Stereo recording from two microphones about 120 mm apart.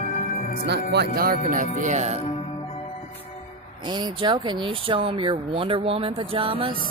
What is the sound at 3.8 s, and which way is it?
Speech, 40° right (ahead or behind).